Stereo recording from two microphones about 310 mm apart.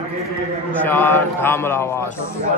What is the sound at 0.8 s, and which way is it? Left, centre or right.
A man's voice, centre.